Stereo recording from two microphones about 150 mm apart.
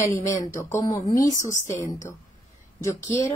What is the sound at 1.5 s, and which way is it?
Speech, 55° left (ahead or behind).